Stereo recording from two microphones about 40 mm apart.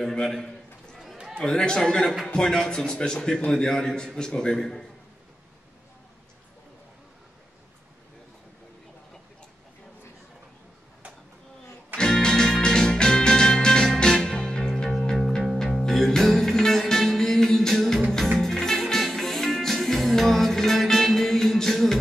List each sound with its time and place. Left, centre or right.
0.0 s a man's voice: centre
12.0 s music: left